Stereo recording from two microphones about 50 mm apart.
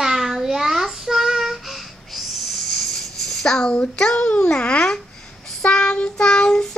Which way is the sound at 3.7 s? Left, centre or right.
Centre.